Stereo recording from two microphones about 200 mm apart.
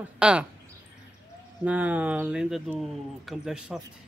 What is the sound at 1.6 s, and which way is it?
A man's voice, 5° right (ahead or behind).